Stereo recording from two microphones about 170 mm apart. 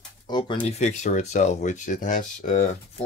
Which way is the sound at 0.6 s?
40° left (ahead or behind).